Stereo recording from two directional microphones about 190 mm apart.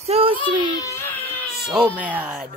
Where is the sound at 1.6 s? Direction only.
5° right (ahead or behind).